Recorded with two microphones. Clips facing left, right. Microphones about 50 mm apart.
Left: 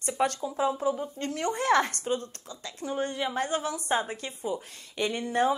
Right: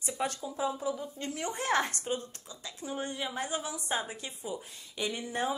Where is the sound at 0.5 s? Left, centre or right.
Left.